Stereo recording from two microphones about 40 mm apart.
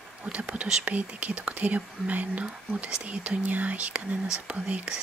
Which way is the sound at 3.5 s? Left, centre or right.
Right.